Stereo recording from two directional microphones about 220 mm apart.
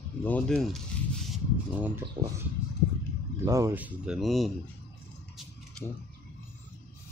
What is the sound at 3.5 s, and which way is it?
Speech, 15° right (ahead or behind).